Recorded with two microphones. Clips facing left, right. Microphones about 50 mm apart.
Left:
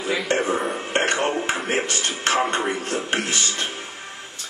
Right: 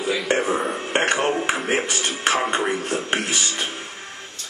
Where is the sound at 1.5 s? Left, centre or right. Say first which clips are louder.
Right 1 dB; centre.